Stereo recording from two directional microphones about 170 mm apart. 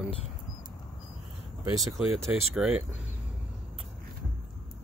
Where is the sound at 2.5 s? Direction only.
5° right (ahead or behind).